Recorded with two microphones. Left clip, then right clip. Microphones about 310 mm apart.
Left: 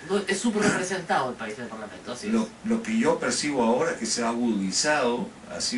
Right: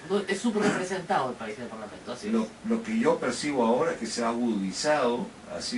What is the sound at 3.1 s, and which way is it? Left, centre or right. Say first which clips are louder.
Speech: left 1 dB; centre.